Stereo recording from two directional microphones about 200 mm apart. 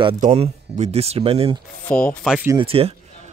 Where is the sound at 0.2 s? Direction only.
30° right (ahead or behind).